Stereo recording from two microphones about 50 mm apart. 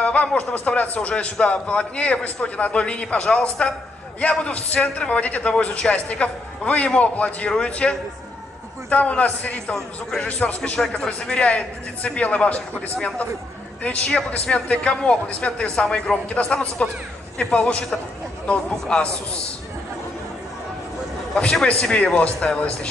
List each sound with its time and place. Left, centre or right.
0.0 s a sound: left
0.4 s a man's voice: left
13.8 s a man's voice: left
21.4 s a man's voice: centre